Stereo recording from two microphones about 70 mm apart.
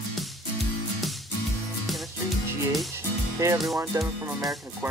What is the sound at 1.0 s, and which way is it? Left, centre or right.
Music, centre.